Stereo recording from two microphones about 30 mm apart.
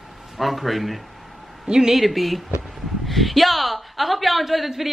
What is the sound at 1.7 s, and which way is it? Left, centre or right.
Speech, right.